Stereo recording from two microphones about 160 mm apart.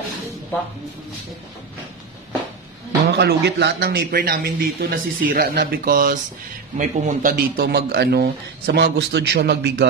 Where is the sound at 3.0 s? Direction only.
90° right.